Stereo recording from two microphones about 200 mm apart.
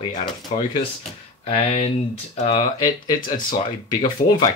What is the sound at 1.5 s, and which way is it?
Speech, 30° left (ahead or behind).